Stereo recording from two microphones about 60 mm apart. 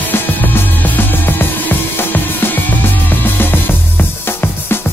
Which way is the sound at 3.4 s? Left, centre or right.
Left.